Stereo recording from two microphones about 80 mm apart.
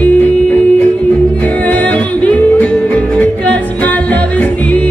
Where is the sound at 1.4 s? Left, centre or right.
Centre.